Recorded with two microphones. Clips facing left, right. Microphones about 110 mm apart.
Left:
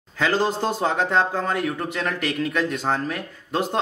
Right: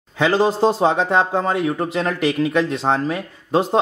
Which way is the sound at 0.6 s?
30° right (ahead or behind).